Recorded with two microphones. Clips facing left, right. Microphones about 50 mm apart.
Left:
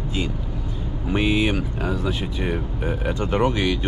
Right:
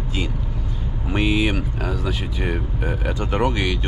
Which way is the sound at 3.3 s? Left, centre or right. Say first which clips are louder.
Even; right.